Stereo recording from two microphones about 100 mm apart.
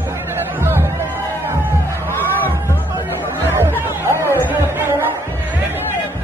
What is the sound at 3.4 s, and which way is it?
Chatter, 25° right (ahead or behind).